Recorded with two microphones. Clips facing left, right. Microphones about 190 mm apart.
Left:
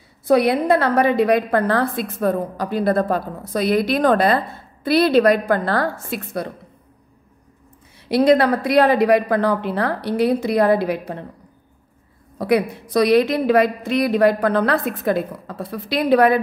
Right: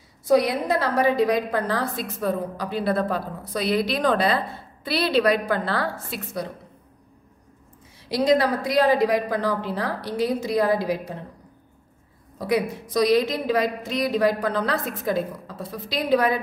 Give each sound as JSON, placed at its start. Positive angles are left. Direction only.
{"t": 0.3, "sound": "a woman's voice", "side_deg": 60}
{"t": 8.1, "sound": "speech", "side_deg": 60}
{"t": 12.4, "sound": "speech", "side_deg": 60}